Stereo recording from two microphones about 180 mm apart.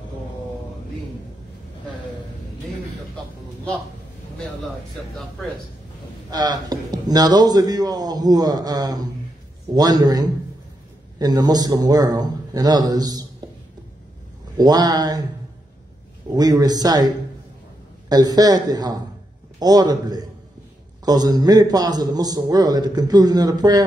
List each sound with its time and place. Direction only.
6.3 s a man's voice: 20° right (ahead or behind)
13.4 s a sound: 20° right (ahead or behind)
14.6 s a man's voice: 20° right (ahead or behind)
16.3 s a man's voice: 20° right (ahead or behind)